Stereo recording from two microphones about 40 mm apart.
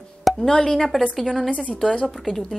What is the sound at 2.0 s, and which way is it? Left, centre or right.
Speech, centre.